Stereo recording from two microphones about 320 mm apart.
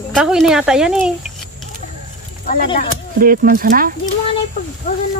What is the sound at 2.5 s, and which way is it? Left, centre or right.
Speech, left.